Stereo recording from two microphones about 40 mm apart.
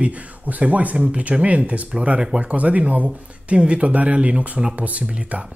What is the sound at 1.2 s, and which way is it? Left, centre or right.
Speech, right.